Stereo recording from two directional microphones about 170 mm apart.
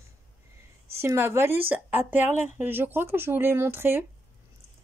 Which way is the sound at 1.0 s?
15° right (ahead or behind).